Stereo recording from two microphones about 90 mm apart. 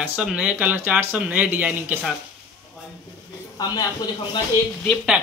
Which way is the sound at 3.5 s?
50° left (ahead or behind).